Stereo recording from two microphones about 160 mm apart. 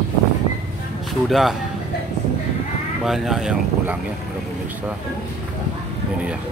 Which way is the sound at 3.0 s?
Centre (ahead or behind).